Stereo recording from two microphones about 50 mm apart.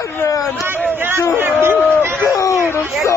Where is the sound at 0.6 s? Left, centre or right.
Right.